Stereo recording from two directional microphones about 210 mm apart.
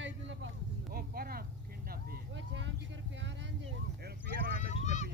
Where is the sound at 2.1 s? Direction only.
60° right (ahead or behind).